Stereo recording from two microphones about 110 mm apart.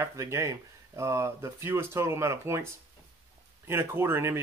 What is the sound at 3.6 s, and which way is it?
Speech, 20° right (ahead or behind).